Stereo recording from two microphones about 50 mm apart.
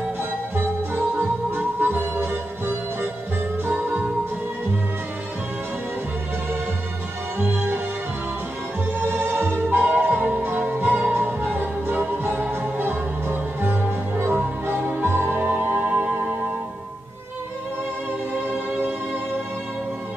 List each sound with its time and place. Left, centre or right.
0.2 s music: right
7.3 s music: right
8.9 s music: right
14.3 s music: right
15.0 s music: right
15.4 s music: right